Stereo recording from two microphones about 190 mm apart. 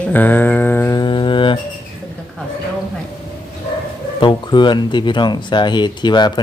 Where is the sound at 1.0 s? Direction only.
25° left (ahead or behind).